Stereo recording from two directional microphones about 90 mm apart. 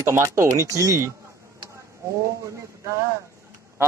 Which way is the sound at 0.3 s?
35° right (ahead or behind).